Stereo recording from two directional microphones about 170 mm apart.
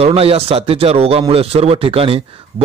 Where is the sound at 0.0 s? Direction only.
35° right (ahead or behind).